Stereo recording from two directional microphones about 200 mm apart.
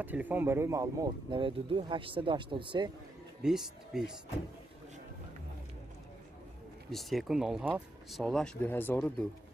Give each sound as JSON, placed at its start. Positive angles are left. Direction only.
{"t": 0.0, "sound": "speech", "side_deg": -10}
{"t": 3.4, "sound": "speech", "side_deg": 0}
{"t": 6.9, "sound": "speech", "side_deg": 0}